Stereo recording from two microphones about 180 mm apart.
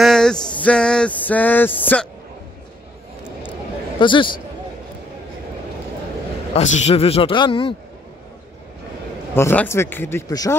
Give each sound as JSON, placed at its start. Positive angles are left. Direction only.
{"t": 0.0, "sound": "music", "side_deg": 5}
{"t": 0.6, "sound": "speech", "side_deg": 5}
{"t": 4.0, "sound": "a man's voice", "side_deg": 25}
{"t": 6.5, "sound": "speech", "side_deg": 35}
{"t": 9.3, "sound": "speech", "side_deg": 10}